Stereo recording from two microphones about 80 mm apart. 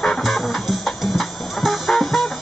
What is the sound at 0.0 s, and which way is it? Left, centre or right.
Music, centre.